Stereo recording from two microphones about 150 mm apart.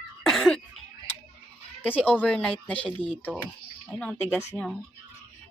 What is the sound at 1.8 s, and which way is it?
A woman's voice, 10° left (ahead or behind).